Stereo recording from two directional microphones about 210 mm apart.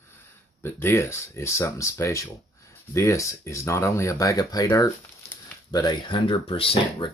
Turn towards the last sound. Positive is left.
turn(degrees=25)  # may be behind; listen again after turning